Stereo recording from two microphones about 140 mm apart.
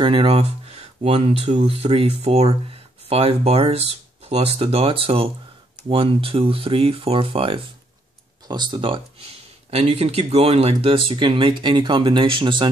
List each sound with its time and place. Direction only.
0.0 s speech: 40° right (ahead or behind)